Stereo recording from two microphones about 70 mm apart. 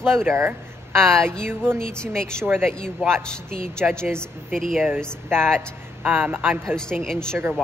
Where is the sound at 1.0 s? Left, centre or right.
Centre.